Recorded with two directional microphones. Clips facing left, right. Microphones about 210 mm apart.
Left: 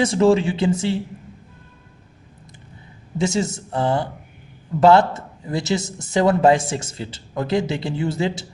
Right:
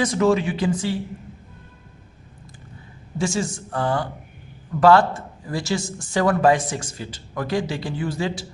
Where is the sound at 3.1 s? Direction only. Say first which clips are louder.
Left 3 dB; 20° left (ahead or behind).